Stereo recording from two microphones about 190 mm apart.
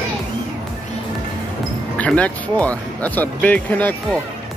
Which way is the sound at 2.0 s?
5° left (ahead or behind).